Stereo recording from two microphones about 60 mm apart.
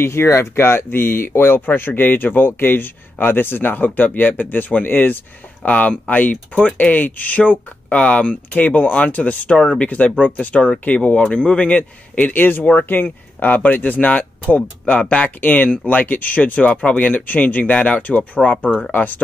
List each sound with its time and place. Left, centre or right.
0.0 s speech: left